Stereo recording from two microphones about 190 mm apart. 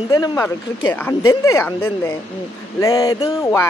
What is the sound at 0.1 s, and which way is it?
Speech, 20° left (ahead or behind).